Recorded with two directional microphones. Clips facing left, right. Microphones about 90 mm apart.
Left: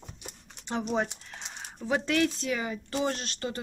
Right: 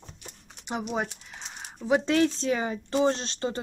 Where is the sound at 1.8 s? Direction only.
20° right (ahead or behind).